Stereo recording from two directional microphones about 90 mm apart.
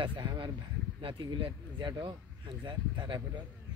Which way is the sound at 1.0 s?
65° right (ahead or behind).